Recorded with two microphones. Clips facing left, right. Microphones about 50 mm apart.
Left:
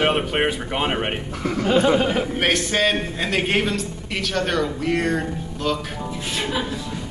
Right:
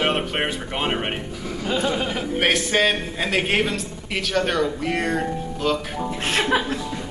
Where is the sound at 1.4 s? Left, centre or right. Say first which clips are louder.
Left 6 dB; left.